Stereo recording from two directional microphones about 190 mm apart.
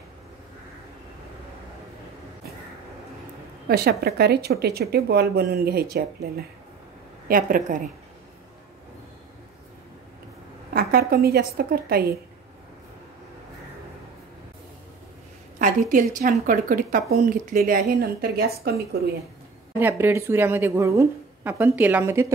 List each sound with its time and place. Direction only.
3.6 s a woman's voice: 55° right (ahead or behind)
10.7 s a woman's voice: 50° right (ahead or behind)
15.6 s a woman's voice: 45° right (ahead or behind)
19.8 s a woman's voice: 10° right (ahead or behind)